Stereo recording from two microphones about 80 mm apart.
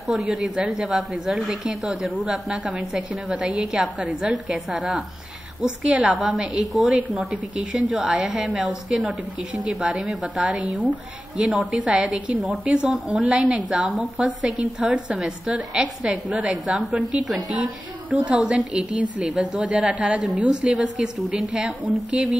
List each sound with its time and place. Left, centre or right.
0.1 s a woman's voice: centre
7.5 s a woman's voice: centre
9.7 s a woman's voice: centre
13.2 s a woman's voice: centre